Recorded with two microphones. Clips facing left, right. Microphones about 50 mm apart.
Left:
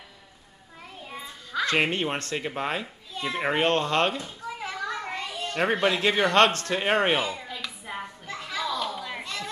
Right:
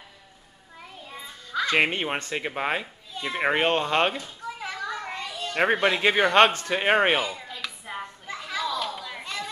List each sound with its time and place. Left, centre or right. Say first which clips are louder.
1.2 s music: right 1 dB; centre
1.7 s speech: right 2 dB; centre
4.9 s children playing: left 1 dB; centre
5.5 s speech: right 2 dB; centre
7.2 s children playing: left 1 dB; centre